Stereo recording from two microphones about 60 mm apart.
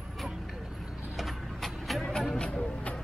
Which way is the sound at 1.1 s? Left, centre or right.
Centre.